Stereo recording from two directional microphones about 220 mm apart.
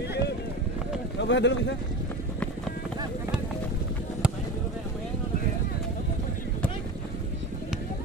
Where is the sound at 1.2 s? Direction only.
55° left (ahead or behind).